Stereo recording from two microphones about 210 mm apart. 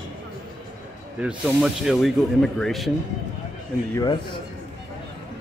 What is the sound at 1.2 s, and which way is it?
Speech, centre (ahead or behind).